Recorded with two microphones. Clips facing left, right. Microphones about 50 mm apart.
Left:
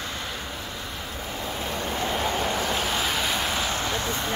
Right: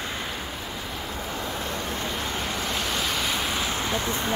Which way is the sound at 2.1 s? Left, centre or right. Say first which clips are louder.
Left 4 dB; centre.